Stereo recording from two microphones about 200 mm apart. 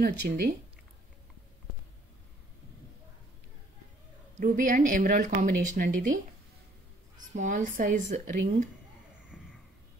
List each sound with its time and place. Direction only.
0.0 s speech: 50° right (ahead or behind)
4.4 s a woman's voice: 40° right (ahead or behind)
7.3 s a woman's voice: 40° right (ahead or behind)
9.3 s a sound: centre (ahead or behind)